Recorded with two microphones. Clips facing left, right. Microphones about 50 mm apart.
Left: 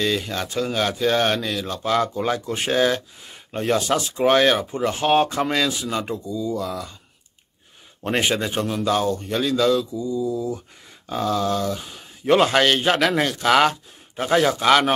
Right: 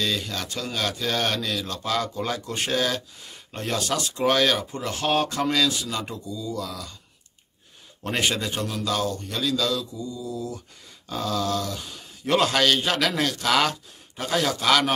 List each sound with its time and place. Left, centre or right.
0.0 s speech: centre
8.0 s speech: left
10.3 s a sound: centre
12.3 s speech: left